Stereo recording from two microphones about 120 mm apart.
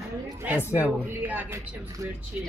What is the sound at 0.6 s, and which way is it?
Speech, 20° left (ahead or behind).